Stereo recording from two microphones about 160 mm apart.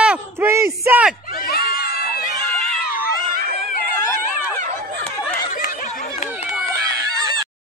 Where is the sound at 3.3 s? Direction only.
75° right (ahead or behind).